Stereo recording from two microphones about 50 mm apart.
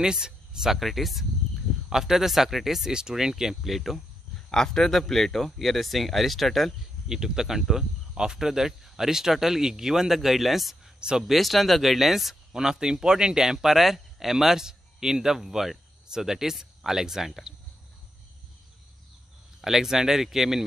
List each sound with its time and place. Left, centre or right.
0.0 s speech: centre
0.7 s speech: centre
4.5 s speech: centre
7.1 s speech: centre
11.0 s speech: centre
11.2 s speech: centre
19.6 s speech: centre